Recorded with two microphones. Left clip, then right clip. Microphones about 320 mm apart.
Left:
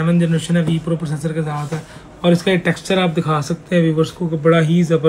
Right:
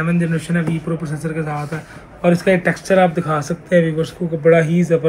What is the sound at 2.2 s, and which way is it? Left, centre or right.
Speech, left.